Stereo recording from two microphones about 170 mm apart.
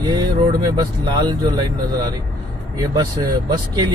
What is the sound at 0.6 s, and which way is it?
Speech, 25° right (ahead or behind).